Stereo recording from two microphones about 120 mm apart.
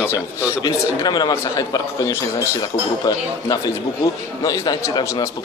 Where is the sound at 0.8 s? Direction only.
30° left (ahead or behind).